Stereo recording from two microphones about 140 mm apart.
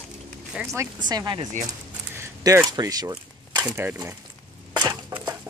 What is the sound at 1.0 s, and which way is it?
Speech, 30° right (ahead or behind).